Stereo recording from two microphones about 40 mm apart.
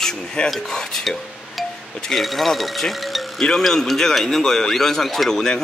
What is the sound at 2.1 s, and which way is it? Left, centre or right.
Speech, centre.